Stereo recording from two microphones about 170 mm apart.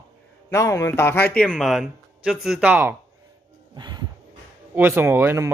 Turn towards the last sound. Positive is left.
turn(degrees=-15)  # may be behind; listen again after turning